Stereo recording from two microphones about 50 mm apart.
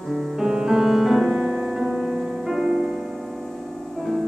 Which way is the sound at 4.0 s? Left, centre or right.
Centre.